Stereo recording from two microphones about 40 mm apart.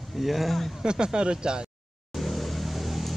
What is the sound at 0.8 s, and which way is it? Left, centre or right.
Speech, right.